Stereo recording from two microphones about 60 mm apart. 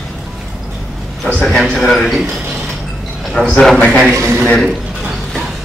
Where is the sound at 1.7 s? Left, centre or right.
Centre.